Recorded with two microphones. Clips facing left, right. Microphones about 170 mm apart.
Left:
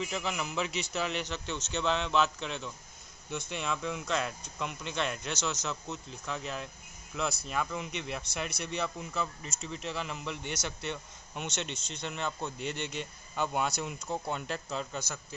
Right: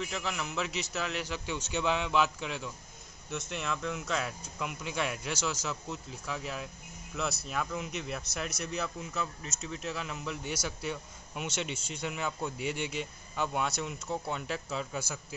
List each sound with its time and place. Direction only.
0.0 s a man's voice: centre (ahead or behind)